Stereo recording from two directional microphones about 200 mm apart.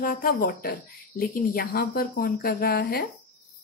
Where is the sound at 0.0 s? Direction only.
45° left (ahead or behind).